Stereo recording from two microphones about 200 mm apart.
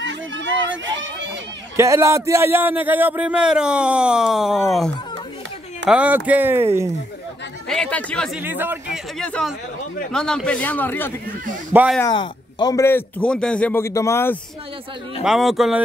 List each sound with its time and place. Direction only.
0.0 s a sound: 65° right (ahead or behind)
1.8 s a man's voice: 15° right (ahead or behind)
7.6 s a man's voice: 5° left (ahead or behind)
8.4 s speech: 10° right (ahead or behind)
9.2 s a man's voice: 5° left (ahead or behind)
11.7 s speech: 5° right (ahead or behind)
12.0 s speech: 20° left (ahead or behind)
15.2 s a man's voice: centre (ahead or behind)